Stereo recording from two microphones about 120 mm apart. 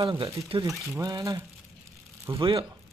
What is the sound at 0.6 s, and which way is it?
Speech, 30° right (ahead or behind).